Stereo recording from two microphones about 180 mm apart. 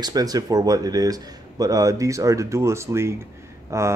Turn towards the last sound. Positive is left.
turn(degrees=-15)  # may be behind; listen again after turning